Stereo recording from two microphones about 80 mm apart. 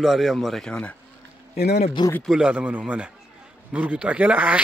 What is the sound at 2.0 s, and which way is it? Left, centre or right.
Speech, left.